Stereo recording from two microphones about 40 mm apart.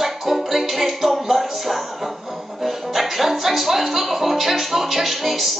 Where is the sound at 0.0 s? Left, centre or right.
Centre.